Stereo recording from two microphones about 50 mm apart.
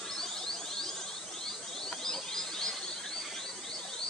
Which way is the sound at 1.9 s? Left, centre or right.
Centre.